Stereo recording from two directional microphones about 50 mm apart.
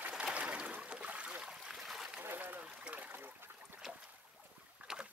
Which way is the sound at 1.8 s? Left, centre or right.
Centre.